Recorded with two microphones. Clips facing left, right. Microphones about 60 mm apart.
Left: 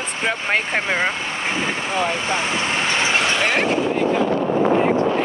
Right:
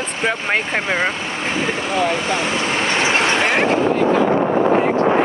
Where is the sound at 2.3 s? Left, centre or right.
Left.